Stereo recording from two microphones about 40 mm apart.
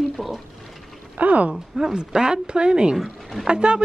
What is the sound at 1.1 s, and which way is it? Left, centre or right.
Speech, right.